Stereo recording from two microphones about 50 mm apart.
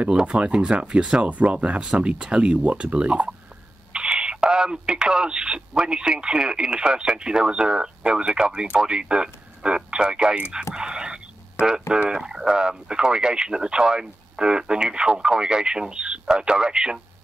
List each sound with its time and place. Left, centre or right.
0.0 s speech: right